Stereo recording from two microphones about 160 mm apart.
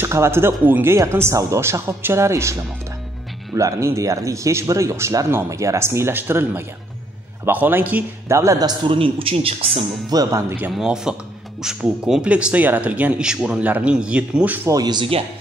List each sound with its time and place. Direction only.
0.0 s a man's voice: 15° right (ahead or behind); by 9.7 s 35° right (ahead or behind)
10.0 s a man's voice: 25° right (ahead or behind)
10.7 s speech: 5° right (ahead or behind)
14.8 s a man's voice: 30° right (ahead or behind)